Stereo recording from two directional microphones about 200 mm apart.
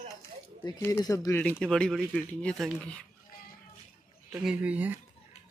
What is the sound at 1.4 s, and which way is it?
Speech, 5° left (ahead or behind).